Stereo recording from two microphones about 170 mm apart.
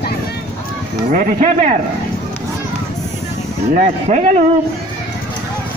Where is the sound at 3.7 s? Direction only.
40° right (ahead or behind).